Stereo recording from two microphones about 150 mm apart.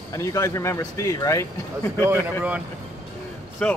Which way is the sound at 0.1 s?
20° left (ahead or behind).